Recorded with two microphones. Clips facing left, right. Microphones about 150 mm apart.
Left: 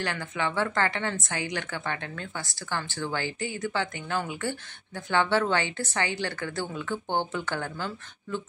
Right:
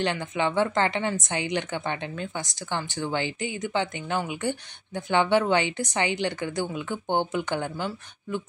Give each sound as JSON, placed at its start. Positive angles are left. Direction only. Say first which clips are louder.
{"t": 0.0, "sound": "a woman's voice", "louder": "right 4 dB", "side_deg": -20}